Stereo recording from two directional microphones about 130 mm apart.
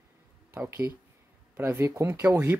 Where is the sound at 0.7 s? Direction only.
20° right (ahead or behind).